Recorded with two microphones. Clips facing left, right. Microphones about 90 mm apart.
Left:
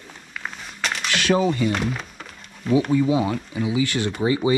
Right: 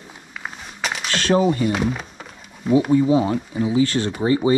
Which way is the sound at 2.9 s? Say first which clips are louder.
Right 3 dB; 30° right (ahead or behind).